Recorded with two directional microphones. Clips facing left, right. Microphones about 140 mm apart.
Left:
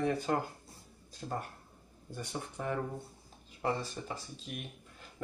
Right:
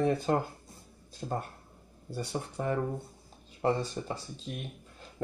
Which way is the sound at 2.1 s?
35° right (ahead or behind).